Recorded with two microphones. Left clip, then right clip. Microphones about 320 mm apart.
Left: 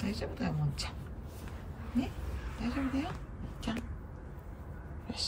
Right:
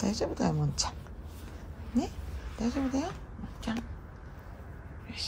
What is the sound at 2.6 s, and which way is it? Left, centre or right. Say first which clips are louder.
Speech: right 4 dB; centre.